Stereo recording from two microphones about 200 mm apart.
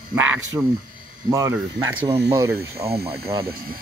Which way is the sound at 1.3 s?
15° right (ahead or behind).